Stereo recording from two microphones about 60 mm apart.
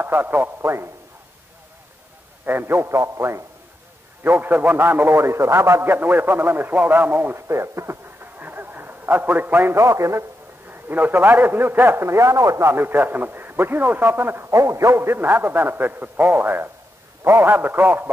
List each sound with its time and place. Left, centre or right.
0.0 s a man's voice: right
0.6 s a man's voice: right
2.4 s a man's voice: right
3.0 s a man's voice: right
4.2 s a man's voice: right
7.4 s speech: right
8.4 s a sound: right
9.8 s a man's voice: right
10.7 s a man's voice: right
12.7 s a man's voice: right
14.5 s a man's voice: right